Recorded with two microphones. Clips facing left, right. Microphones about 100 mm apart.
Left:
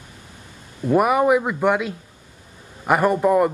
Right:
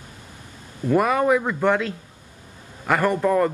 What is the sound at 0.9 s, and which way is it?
Speech, 15° left (ahead or behind).